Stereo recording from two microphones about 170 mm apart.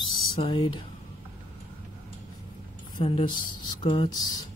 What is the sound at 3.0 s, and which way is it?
Speech, 30° left (ahead or behind).